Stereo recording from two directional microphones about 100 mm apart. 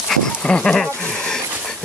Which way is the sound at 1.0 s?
10° left (ahead or behind).